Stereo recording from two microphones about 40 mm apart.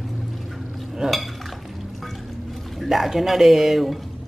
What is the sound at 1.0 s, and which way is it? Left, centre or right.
Speech, centre.